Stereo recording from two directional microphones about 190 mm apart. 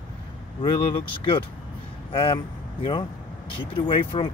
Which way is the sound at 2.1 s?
25° left (ahead or behind).